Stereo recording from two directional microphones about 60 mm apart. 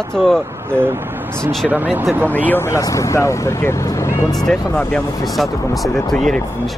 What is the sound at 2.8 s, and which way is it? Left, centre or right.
Speech, left.